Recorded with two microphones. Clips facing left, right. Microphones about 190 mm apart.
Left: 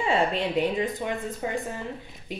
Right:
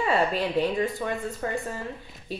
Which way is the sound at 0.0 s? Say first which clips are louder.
Even; 25° left (ahead or behind).